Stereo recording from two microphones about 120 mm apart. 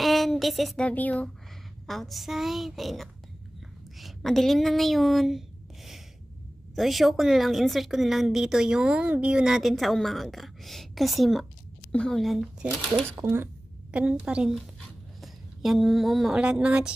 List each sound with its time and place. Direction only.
0.0 s a sound: centre (ahead or behind)
0.8 s speech: 10° left (ahead or behind)
1.9 s a woman's voice: centre (ahead or behind)
6.7 s a woman's voice: centre (ahead or behind)
13.2 s speech: 20° right (ahead or behind)
13.9 s a woman's voice: 10° right (ahead or behind)